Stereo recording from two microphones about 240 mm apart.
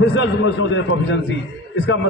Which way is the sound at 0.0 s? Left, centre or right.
Left.